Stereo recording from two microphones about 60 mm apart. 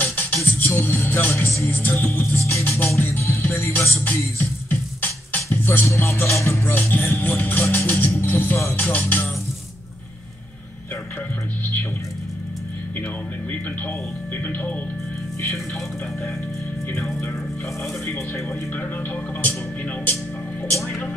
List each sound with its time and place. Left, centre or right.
0.0 s music: left
3.0 s speech: left
4.4 s music: left
6.7 s speech: left
8.2 s music: left
8.7 s speech: left
9.0 s music: left
14.3 s speech: left
18.0 s music: left